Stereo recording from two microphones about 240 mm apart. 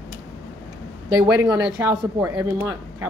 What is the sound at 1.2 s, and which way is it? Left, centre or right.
Speech, centre.